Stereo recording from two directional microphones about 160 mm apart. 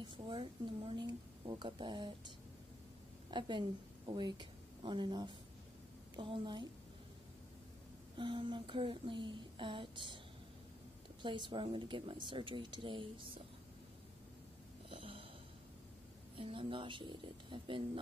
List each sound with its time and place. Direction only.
0.0 s a woman's voice: 35° right (ahead or behind)
8.2 s a woman's voice: 30° right (ahead or behind)
11.2 s a woman's voice: 30° right (ahead or behind)
14.9 s a sound: 35° right (ahead or behind)
16.3 s a woman's voice: 35° right (ahead or behind)